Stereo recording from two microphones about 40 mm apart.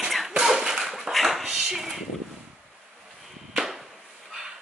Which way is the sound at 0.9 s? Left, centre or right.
Centre.